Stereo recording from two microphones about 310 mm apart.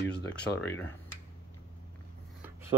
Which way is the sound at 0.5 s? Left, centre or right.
Left.